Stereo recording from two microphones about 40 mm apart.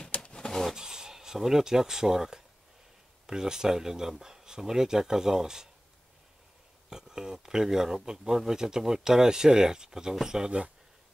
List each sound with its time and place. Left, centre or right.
0.0 s bird: left
0.7 s speech: centre
6.9 s speech: centre